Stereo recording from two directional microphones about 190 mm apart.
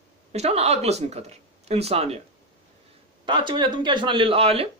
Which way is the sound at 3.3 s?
25° right (ahead or behind).